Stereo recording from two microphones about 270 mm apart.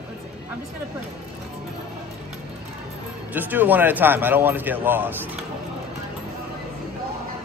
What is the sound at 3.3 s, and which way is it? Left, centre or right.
A man's voice, centre.